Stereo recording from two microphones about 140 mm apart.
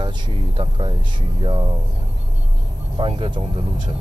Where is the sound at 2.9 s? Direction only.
40° right (ahead or behind).